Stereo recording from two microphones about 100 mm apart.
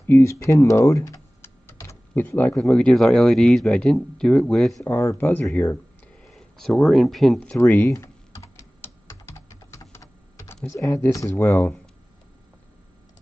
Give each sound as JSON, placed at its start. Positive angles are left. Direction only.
{"t": 0.0, "sound": "typing", "side_deg": 25}
{"t": 2.1, "sound": "speech", "side_deg": 20}
{"t": 2.5, "sound": "speech", "side_deg": 5}
{"t": 4.8, "sound": "speech", "side_deg": 20}
{"t": 6.2, "sound": "speech", "side_deg": 5}
{"t": 7.5, "sound": "typing", "side_deg": 25}
{"t": 10.7, "sound": "speech", "side_deg": 25}
{"t": 11.3, "sound": "speech", "side_deg": 20}